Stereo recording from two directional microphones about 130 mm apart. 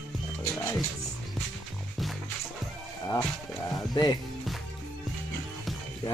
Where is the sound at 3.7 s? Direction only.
30° left (ahead or behind).